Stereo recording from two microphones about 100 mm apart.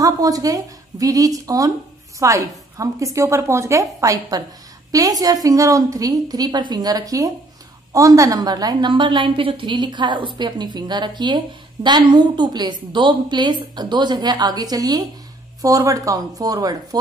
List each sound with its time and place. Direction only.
0.0 s a woman's voice: 35° right (ahead or behind)